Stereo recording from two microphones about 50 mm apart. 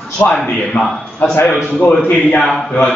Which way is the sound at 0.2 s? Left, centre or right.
Left.